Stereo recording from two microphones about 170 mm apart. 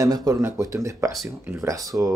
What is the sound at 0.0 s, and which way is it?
Speech, 20° right (ahead or behind).